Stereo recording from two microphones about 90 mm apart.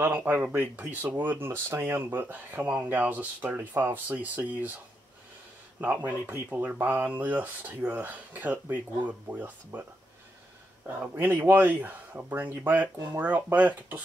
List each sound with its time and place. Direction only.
0.0 s speech: 20° right (ahead or behind)
5.8 s speech: 20° right (ahead or behind)
11.0 s speech: 20° right (ahead or behind)